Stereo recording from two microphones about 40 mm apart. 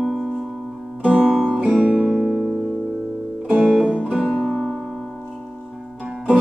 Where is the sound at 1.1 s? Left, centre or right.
Right.